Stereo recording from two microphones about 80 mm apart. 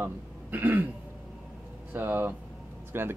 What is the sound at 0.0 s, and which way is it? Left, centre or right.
Speech, right.